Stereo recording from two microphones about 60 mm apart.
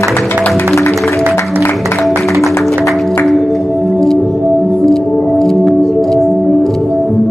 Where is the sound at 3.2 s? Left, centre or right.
Centre.